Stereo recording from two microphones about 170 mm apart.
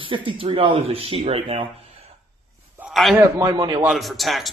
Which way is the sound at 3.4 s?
25° right (ahead or behind).